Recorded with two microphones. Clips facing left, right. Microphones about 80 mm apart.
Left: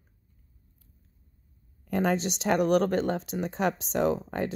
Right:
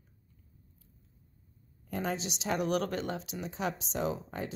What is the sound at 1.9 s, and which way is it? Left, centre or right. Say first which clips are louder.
A woman's voice: left 8 dB; left.